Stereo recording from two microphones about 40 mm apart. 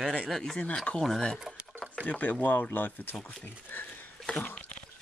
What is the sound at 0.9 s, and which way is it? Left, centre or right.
Speech, left.